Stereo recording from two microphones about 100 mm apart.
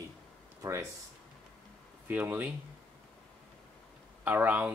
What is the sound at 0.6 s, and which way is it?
Speech, 30° right (ahead or behind).